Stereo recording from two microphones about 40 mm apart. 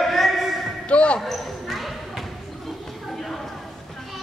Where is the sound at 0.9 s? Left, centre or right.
Left.